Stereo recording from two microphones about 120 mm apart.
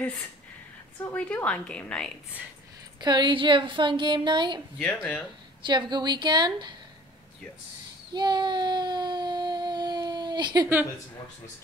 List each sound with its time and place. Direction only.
1.1 s a woman's voice: 10° left (ahead or behind)
3.0 s speech: 40° right (ahead or behind)
4.7 s a woman's voice: 10° left (ahead or behind)
5.7 s speech: 40° right (ahead or behind)
8.1 s child singing: 40° right (ahead or behind)